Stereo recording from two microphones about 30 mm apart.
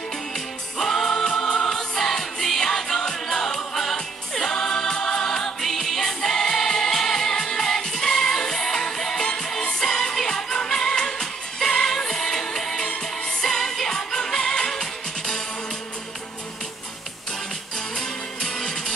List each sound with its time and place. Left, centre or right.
0.7 s music: centre
3.9 s choir: left
5.9 s music: centre
17.7 s music: left